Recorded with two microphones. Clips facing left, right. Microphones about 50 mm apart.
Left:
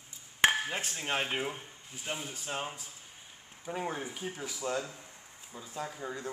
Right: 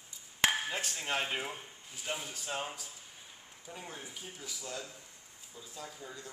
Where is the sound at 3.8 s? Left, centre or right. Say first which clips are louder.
Left 11 dB; left.